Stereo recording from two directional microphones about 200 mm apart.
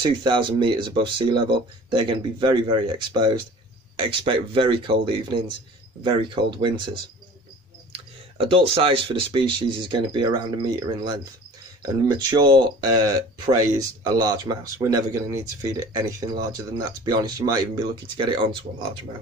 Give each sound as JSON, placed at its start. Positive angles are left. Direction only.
{"t": 0.0, "sound": "speech", "side_deg": -25}